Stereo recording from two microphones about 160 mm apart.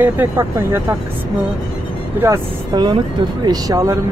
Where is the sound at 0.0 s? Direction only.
15° right (ahead or behind).